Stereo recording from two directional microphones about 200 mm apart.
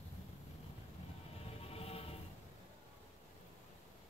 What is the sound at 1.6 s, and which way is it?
Music, 30° left (ahead or behind).